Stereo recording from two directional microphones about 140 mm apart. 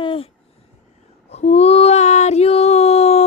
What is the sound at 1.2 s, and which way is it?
Female singing, 50° left (ahead or behind).